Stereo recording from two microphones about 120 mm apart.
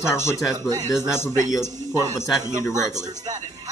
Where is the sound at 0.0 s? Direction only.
25° left (ahead or behind).